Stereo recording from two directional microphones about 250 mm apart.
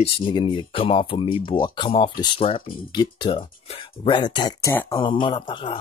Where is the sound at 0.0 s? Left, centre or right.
Centre.